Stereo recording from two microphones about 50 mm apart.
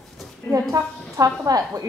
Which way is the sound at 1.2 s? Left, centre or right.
Right.